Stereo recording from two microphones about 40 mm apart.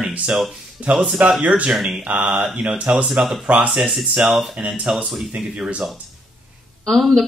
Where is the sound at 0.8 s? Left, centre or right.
Right.